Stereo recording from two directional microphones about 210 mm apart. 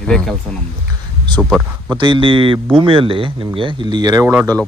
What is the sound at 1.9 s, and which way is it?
Speech, 25° right (ahead or behind).